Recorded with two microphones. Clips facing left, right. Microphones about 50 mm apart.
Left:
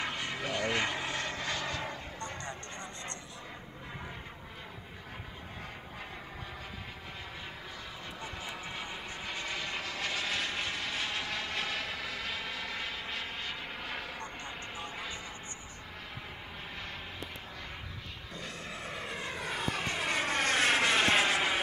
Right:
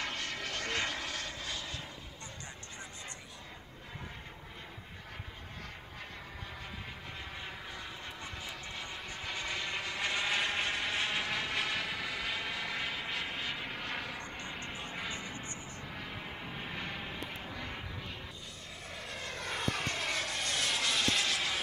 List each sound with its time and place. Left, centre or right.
0.0 s vehicle: centre
1.2 s vehicle: left
8.5 s vehicle: centre
16.7 s vehicle: centre
18.9 s vehicle: left
19.3 s vehicle: centre
19.9 s vehicle: left
20.2 s vehicle: left